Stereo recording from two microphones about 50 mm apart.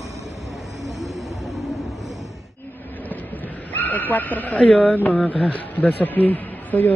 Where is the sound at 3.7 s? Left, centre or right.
Left.